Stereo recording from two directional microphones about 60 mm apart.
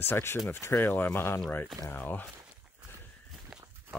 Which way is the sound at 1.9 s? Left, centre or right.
Left.